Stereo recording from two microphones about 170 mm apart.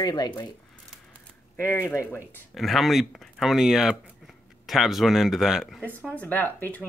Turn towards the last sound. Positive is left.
turn(degrees=10)  # may be behind; listen again after turning